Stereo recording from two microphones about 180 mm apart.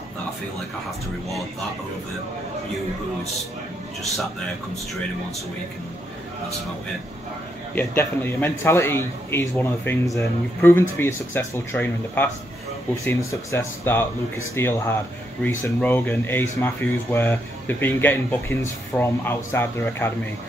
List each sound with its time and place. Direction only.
7.7 s speech: 10° left (ahead or behind)